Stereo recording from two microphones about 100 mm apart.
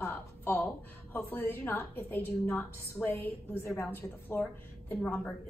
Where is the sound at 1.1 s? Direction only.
20° left (ahead or behind).